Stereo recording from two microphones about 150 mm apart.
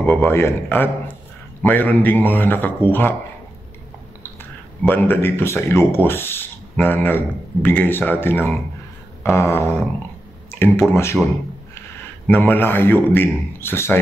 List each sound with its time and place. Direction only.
0.0 s speech: 10° left (ahead or behind)
4.8 s speech: 15° left (ahead or behind)
12.3 s speech: 15° left (ahead or behind)